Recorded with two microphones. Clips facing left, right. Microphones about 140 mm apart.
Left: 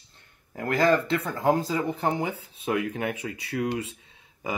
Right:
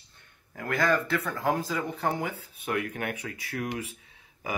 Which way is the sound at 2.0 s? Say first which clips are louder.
Left 3 dB; 20° left (ahead or behind).